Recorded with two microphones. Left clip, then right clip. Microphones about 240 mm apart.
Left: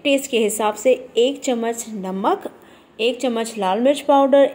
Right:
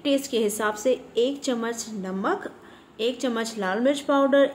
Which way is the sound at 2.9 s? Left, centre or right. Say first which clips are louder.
Left 6 dB; centre.